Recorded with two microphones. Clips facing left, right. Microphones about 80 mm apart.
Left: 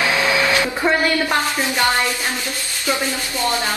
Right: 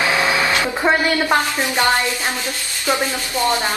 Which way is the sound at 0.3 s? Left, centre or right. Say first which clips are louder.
Even; right.